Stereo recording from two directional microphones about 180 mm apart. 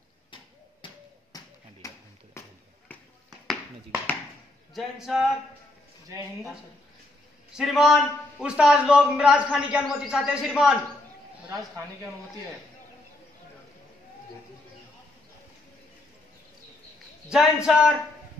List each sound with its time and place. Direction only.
0.8 s a sound: 20° left (ahead or behind)
4.7 s a man's voice: centre (ahead or behind)
7.5 s a man's voice: centre (ahead or behind)
17.3 s a man's voice: 5° right (ahead or behind)